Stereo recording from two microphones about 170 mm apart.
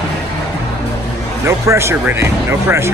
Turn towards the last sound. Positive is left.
turn(degrees=-15)  # may be behind; listen again after turning